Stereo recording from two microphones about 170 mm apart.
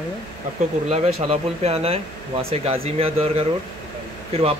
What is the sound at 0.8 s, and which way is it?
Speech, 40° right (ahead or behind).